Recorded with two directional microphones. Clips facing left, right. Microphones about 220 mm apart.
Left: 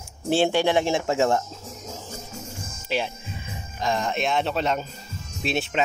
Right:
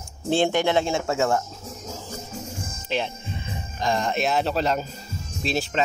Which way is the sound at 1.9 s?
15° left (ahead or behind).